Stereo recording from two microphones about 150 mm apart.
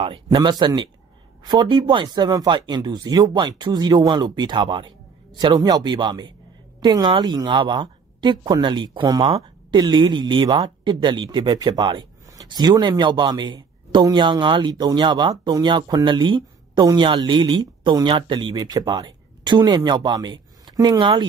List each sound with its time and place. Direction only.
0.0 s a woman's voice: 35° right (ahead or behind)